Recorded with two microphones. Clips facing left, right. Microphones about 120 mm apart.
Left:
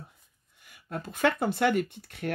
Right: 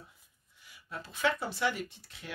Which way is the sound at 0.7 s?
55° left (ahead or behind).